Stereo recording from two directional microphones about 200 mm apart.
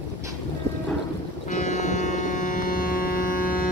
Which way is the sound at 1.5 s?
40° left (ahead or behind).